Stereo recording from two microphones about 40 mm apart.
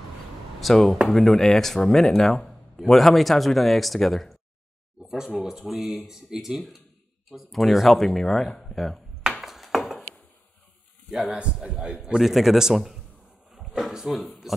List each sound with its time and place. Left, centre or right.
0.6 s speech: centre
5.0 s a sound: centre
5.7 s speech: centre
7.5 s speech: centre
9.4 s ping: centre
11.1 s speech: centre
11.5 s a man's voice: right
12.2 s speech: centre
14.0 s speech: centre